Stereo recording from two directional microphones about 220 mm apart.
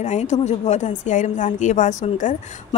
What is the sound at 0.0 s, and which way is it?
A woman's voice, 30° left (ahead or behind).